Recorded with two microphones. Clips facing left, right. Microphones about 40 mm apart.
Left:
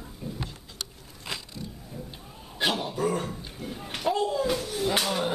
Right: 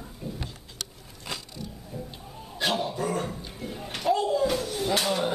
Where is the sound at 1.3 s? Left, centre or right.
Left.